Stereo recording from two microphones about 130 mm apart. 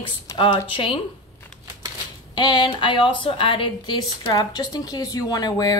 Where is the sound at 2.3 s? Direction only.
35° left (ahead or behind).